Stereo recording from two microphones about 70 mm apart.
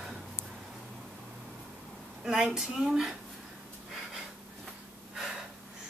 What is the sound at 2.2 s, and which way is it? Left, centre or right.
Speech, centre.